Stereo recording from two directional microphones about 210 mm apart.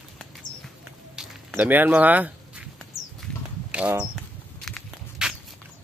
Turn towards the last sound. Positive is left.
turn(degrees=0)  # may be behind; listen again after turning